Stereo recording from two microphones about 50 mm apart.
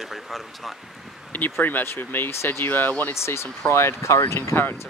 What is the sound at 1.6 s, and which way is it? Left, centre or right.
Speech, left.